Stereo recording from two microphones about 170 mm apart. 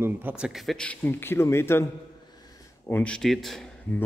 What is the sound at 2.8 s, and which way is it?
Speech, 10° left (ahead or behind).